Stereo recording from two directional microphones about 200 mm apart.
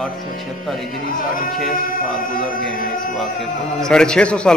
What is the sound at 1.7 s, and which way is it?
Speech, 45° left (ahead or behind).